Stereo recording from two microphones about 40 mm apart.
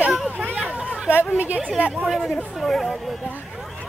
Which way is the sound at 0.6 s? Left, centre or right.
Right.